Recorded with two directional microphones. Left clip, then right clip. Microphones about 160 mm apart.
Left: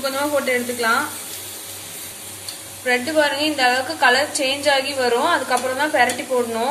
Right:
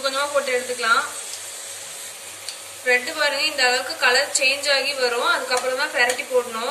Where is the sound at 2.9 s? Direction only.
40° left (ahead or behind).